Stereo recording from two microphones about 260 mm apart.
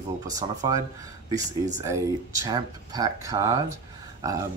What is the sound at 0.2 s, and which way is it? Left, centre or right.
Speech, centre.